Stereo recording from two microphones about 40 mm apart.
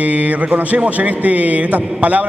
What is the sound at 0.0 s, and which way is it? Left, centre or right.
Speech, right.